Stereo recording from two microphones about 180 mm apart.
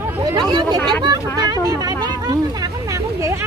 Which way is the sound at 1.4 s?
20° right (ahead or behind).